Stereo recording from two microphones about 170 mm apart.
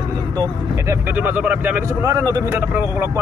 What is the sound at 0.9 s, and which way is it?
Speech, 10° right (ahead or behind).